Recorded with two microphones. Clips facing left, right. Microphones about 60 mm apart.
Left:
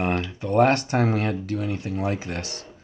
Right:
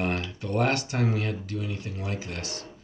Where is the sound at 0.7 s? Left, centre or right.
Left.